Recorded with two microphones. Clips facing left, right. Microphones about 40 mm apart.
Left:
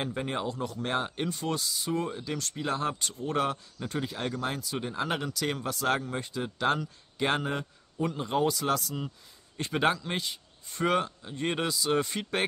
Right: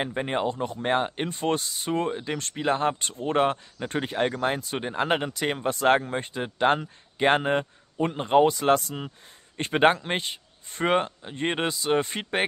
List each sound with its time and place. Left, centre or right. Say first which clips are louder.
0.0 s speech: right 5 dB; right